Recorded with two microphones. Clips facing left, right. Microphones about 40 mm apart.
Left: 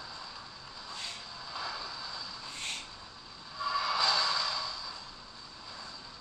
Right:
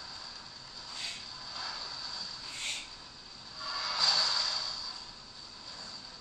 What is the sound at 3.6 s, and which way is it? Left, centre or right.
Music, left.